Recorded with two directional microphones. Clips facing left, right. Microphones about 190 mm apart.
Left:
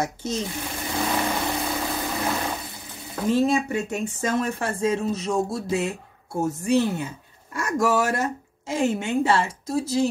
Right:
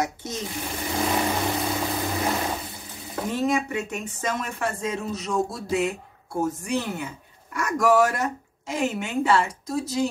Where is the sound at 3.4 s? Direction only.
30° left (ahead or behind).